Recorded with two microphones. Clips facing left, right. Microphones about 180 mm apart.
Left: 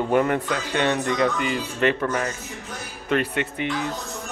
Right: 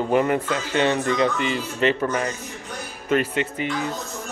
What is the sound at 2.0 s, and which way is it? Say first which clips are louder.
Speech: right 1 dB; 10° right (ahead or behind).